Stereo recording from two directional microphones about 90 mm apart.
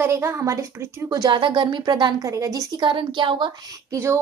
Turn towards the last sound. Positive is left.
turn(degrees=-30)  # may be behind; listen again after turning